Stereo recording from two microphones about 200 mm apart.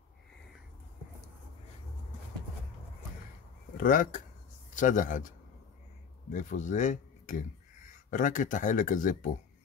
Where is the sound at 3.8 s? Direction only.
40° left (ahead or behind).